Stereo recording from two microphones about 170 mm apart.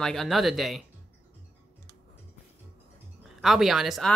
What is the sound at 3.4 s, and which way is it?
Speech, centre (ahead or behind).